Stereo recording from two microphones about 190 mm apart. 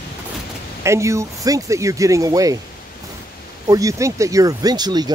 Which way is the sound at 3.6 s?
15° right (ahead or behind).